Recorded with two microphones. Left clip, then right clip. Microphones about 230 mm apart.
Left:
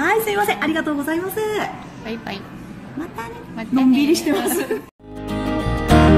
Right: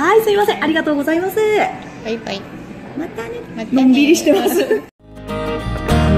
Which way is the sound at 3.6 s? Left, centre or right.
Centre.